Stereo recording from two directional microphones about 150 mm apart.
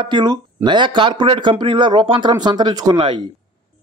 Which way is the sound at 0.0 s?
30° right (ahead or behind).